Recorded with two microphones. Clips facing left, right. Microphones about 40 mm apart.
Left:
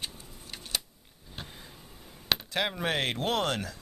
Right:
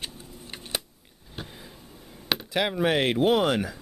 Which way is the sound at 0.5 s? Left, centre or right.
Right.